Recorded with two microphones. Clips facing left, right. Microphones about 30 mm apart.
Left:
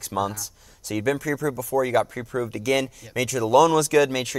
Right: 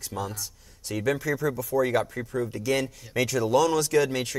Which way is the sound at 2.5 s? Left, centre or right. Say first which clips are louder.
Left 4 dB; left.